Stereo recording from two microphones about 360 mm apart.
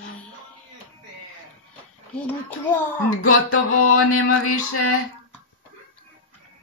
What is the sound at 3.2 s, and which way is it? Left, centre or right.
Music, left.